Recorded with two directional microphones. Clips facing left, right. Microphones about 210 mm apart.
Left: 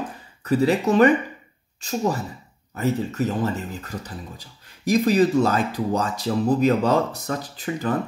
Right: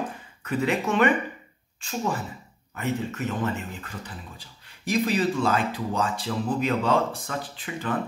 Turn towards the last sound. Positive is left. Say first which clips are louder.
# left 6 dB
turn(degrees=40)  # may be behind; listen again after turning